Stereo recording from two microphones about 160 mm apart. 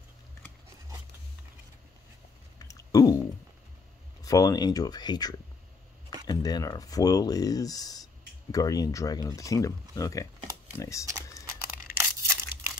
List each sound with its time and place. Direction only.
2.6 s a sound: 20° left (ahead or behind)
4.2 s speech: 20° left (ahead or behind)
12.0 s tearing: 15° right (ahead or behind)